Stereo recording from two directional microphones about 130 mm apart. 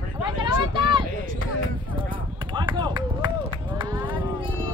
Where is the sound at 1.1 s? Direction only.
90° right.